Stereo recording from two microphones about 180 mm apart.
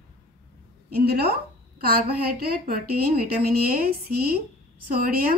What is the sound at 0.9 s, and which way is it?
A woman's voice, 60° right (ahead or behind).